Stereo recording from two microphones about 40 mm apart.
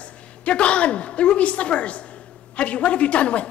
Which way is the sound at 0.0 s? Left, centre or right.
Left.